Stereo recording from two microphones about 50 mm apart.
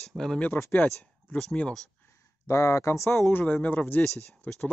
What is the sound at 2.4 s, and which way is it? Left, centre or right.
Speech, left.